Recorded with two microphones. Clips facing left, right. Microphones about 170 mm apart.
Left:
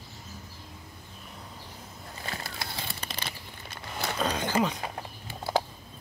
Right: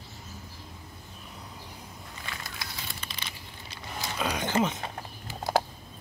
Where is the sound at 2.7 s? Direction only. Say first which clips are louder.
Left 4 dB; 35° left (ahead or behind).